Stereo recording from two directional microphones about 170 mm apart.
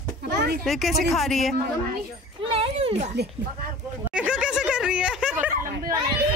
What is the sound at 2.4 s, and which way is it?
Speech, 35° right (ahead or behind).